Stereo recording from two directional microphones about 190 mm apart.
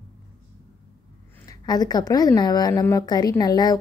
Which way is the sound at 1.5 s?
20° left (ahead or behind).